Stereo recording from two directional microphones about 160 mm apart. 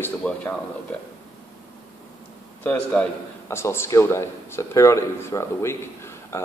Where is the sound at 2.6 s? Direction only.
10° left (ahead or behind).